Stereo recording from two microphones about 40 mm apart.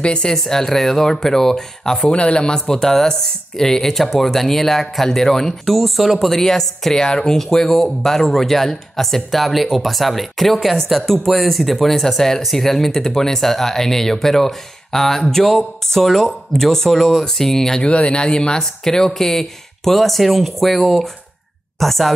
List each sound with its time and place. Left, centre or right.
0.0 s speech: left
0.3 s speech: centre
2.0 s speech: left
2.7 s speech: centre
5.7 s speech: centre
7.4 s speech: centre
17.8 s speech: left; by 22.1 s centre